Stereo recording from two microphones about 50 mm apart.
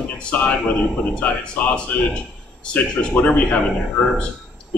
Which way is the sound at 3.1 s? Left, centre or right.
Left.